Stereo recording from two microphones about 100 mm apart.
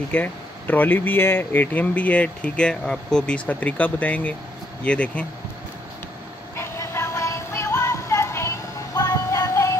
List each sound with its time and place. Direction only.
0.1 s speech: 15° left (ahead or behind)
6.5 s music: 25° left (ahead or behind)